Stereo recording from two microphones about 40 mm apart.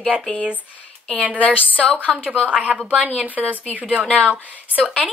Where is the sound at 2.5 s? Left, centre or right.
Right.